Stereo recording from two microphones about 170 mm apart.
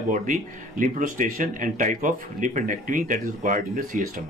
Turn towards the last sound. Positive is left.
turn(degrees=-50)  # may be behind; listen again after turning